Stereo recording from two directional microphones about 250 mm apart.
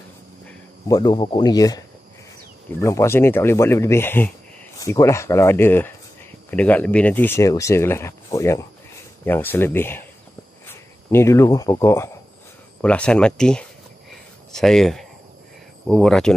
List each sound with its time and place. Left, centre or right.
0.8 s speech: centre
2.8 s speech: centre